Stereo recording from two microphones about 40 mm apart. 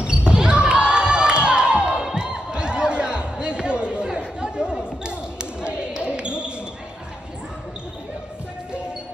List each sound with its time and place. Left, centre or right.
0.0 s basketball bounce: right
2.1 s a sound: right
4.4 s basketball bounce: right